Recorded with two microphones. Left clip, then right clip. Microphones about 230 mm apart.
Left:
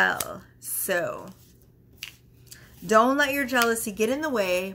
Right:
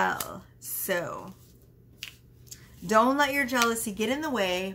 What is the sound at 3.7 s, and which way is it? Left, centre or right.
Speech, centre.